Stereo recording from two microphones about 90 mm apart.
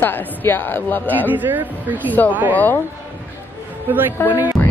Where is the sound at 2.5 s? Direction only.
20° left (ahead or behind).